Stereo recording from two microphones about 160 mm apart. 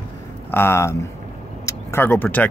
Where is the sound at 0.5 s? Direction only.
15° left (ahead or behind).